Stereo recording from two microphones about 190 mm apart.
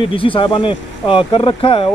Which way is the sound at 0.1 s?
30° left (ahead or behind).